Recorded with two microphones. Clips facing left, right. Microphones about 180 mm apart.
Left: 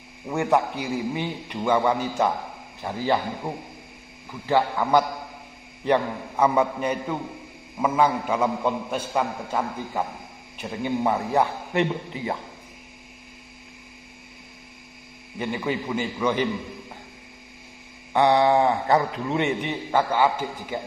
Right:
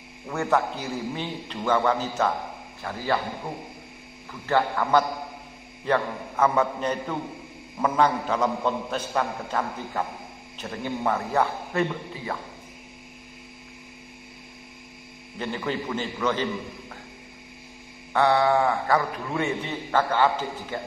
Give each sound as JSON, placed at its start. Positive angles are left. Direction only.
{"t": 0.3, "sound": "a man's voice", "side_deg": 15}
{"t": 4.3, "sound": "a man's voice", "side_deg": 10}
{"t": 15.3, "sound": "a man's voice", "side_deg": 10}
{"t": 18.1, "sound": "a man's voice", "side_deg": 15}